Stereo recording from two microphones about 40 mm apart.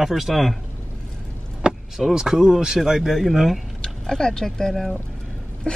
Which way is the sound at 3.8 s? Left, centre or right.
Centre.